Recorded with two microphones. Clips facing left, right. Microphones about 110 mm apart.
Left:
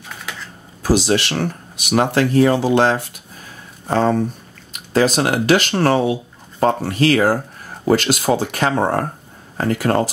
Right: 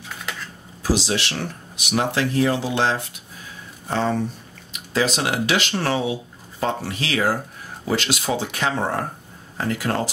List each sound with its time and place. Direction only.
0.8 s speech: 55° left (ahead or behind)